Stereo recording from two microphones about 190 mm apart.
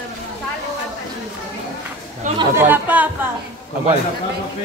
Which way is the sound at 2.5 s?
10° right (ahead or behind).